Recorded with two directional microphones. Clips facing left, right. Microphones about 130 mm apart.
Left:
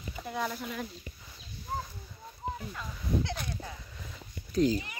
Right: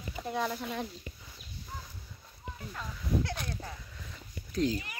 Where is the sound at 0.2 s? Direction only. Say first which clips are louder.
Right 3 dB; centre (ahead or behind).